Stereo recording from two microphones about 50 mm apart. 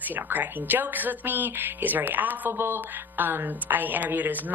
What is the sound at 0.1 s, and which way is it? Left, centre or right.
Speech, right.